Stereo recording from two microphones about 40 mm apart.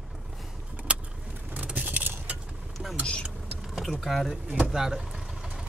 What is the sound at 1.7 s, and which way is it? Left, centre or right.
Vehicle, right.